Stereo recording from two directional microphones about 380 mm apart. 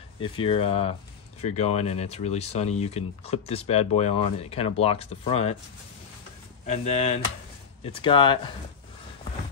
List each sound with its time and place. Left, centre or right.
0.2 s speech: centre
6.6 s speech: centre